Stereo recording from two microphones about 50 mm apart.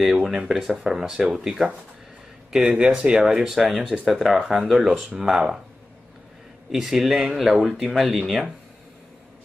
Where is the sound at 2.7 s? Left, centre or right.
Centre.